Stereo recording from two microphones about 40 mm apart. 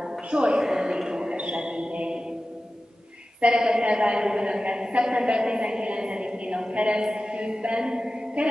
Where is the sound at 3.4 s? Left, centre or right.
Right.